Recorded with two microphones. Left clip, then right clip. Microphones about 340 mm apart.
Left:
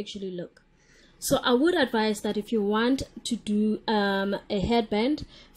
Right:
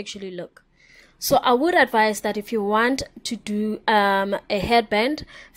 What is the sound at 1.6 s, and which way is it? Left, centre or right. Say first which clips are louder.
A woman's voice: right 6 dB; centre.